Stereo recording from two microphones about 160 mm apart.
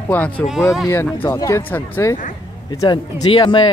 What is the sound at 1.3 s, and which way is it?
Speech, 20° left (ahead or behind).